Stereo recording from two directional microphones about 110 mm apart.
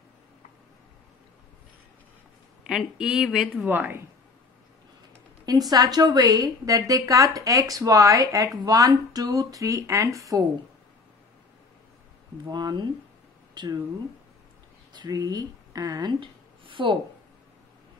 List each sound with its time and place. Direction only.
2.6 s speech: 5° right (ahead or behind)
3.6 s a woman's voice: 20° right (ahead or behind)
5.7 s a woman's voice: 35° right (ahead or behind)
12.4 s a woman's voice: 40° right (ahead or behind)
14.9 s speech: 40° right (ahead or behind)